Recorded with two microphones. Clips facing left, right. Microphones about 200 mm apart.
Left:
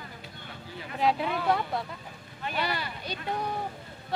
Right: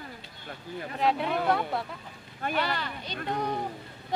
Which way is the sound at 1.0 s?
Centre (ahead or behind).